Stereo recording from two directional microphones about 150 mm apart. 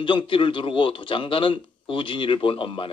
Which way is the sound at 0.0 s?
35° left (ahead or behind).